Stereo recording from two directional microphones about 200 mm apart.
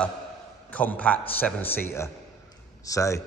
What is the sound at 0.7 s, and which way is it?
A man's voice, 5° left (ahead or behind).